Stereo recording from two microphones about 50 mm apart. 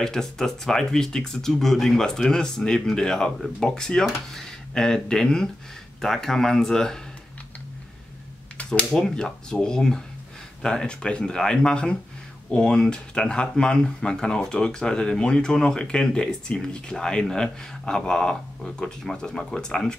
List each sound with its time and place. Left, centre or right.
0.0 s speech: centre
8.6 s speech: centre